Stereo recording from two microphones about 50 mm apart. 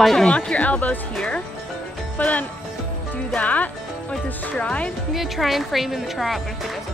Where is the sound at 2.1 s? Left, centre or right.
Left.